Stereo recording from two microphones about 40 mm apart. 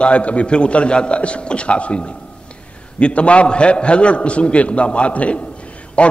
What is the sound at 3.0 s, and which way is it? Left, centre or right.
A man's voice, left.